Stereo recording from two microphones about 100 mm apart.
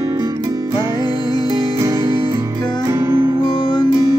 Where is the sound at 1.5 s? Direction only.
35° right (ahead or behind).